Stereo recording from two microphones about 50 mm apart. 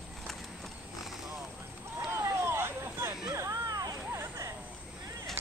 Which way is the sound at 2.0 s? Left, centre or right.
Right.